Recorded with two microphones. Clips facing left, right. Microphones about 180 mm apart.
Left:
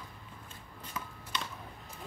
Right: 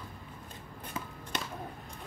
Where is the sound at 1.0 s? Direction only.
25° right (ahead or behind).